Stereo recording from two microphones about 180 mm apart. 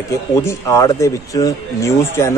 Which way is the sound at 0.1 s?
15° left (ahead or behind).